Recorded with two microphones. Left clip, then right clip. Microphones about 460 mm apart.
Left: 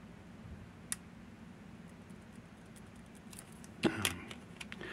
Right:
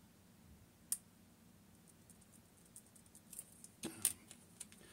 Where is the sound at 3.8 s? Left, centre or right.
Right.